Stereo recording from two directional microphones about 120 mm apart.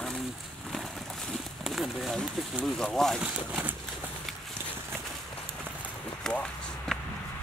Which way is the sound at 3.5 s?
10° right (ahead or behind).